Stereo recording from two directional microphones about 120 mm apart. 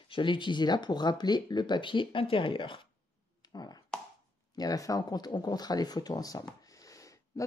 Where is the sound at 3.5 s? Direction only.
35° left (ahead or behind).